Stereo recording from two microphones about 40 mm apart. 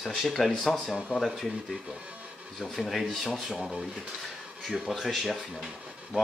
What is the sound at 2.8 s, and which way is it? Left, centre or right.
Speech, centre.